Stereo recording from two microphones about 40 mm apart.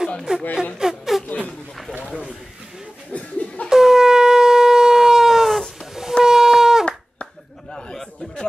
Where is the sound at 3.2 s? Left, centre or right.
Left.